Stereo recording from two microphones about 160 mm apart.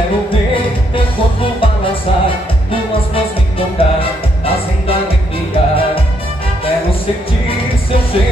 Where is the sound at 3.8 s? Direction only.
35° left (ahead or behind).